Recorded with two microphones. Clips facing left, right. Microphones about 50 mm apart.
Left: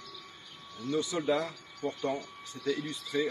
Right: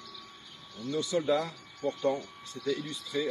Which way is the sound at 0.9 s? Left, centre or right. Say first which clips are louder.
Right 2 dB; centre.